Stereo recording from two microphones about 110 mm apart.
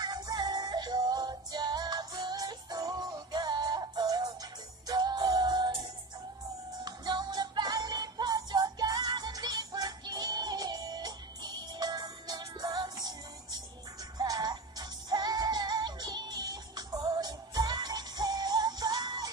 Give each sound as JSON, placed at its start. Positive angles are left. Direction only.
{"t": 0.0, "sound": "music", "side_deg": -40}
{"t": 6.8, "sound": "music", "side_deg": -40}